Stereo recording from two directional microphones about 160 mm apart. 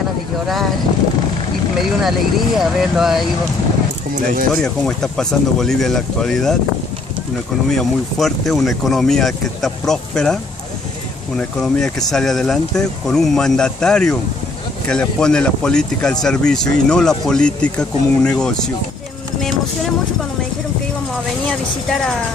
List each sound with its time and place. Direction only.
1.8 s speech: centre (ahead or behind)
4.1 s speech: 60° right (ahead or behind)
4.6 s speech: 5° left (ahead or behind)
7.7 s speech: centre (ahead or behind)
21.5 s speech: 5° left (ahead or behind)